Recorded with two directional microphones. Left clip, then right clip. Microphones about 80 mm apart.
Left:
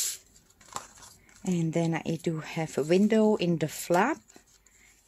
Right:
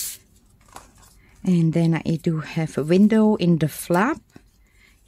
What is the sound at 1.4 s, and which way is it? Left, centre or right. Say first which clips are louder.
Speech: right 7 dB; right.